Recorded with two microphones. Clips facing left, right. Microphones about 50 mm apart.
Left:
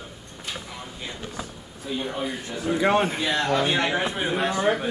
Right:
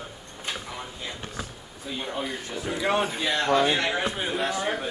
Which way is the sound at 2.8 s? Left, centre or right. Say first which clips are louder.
Left 4 dB; left.